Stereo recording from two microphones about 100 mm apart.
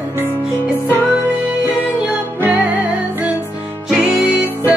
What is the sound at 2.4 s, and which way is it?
Music, 15° right (ahead or behind).